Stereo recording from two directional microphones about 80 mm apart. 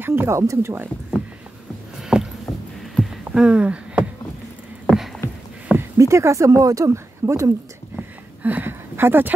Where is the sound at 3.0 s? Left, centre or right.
Centre.